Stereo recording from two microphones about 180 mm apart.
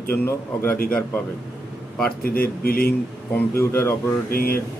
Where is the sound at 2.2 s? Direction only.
55° left (ahead or behind).